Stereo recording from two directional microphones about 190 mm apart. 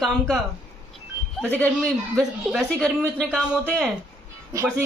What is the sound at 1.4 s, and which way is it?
A man's voice, 5° left (ahead or behind).